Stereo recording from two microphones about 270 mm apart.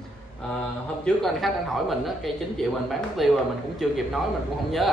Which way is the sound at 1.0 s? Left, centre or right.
Centre.